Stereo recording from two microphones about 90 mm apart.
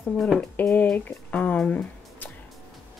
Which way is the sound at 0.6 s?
20° left (ahead or behind).